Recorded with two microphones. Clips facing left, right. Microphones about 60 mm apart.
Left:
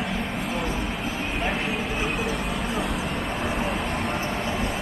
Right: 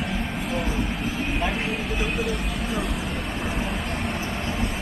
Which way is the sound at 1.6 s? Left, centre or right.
Centre.